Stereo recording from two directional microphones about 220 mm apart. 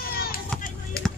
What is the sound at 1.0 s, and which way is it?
Music, 45° left (ahead or behind).